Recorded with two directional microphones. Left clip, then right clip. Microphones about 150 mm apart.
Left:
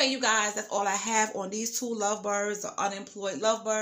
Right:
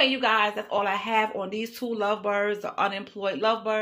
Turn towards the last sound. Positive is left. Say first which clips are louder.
# right 3 dB
turn(degrees=15)  # may be behind; listen again after turning